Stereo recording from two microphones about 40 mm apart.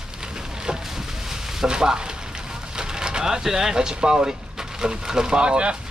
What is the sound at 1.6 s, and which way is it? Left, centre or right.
Speech, centre.